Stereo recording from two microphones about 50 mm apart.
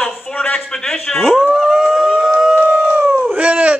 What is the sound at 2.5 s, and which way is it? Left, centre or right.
Howl, right.